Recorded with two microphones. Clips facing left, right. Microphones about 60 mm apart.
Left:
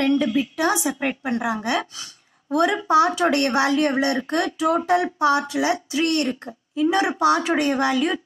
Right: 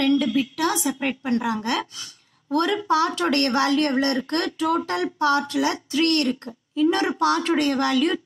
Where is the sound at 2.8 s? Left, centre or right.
Centre.